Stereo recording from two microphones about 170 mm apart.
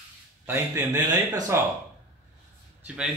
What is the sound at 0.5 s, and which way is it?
Speech, 20° right (ahead or behind).